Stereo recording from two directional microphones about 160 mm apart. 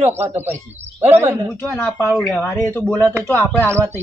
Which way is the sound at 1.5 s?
15° left (ahead or behind).